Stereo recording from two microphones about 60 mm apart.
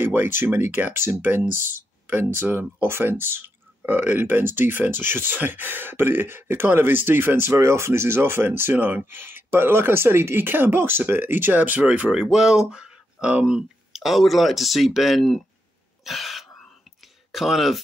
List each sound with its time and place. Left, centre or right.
0.0 s speech: right
11.8 s speech: centre
16.0 s cough: centre
17.3 s speech: centre